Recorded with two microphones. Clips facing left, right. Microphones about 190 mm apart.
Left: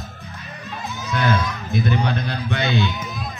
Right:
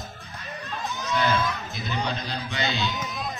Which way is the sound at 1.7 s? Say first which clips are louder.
Left 8 dB; 55° left (ahead or behind).